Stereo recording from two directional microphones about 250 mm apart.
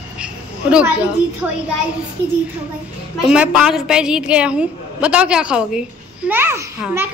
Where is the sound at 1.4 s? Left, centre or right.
Centre.